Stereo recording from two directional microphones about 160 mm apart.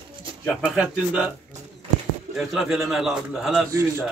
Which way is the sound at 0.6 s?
5° right (ahead or behind).